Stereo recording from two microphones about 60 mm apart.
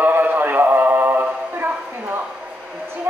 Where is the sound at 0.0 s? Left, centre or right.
Right.